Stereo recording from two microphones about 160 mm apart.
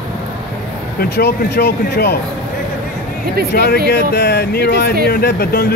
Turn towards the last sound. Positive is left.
turn(degrees=80)